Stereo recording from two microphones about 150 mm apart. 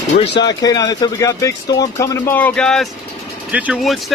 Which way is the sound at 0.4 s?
25° left (ahead or behind).